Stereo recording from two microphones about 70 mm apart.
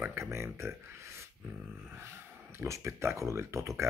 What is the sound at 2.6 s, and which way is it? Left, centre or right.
Speech, right.